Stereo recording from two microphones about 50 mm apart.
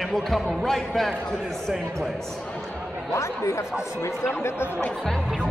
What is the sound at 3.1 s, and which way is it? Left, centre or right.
Speech, left.